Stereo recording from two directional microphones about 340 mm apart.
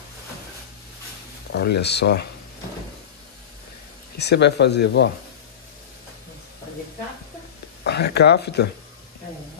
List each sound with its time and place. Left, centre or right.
1.5 s speech: left
4.2 s speech: left
7.8 s speech: left